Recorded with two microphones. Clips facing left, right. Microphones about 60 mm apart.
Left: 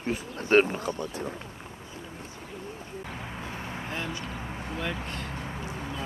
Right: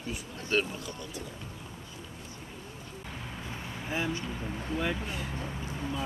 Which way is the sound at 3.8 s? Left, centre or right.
Centre.